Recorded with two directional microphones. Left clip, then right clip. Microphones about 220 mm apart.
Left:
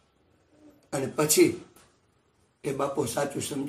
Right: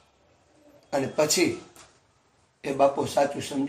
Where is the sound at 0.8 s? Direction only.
20° left (ahead or behind).